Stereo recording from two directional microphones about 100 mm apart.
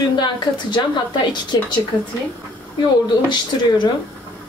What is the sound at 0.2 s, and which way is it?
A woman's voice, 50° left (ahead or behind).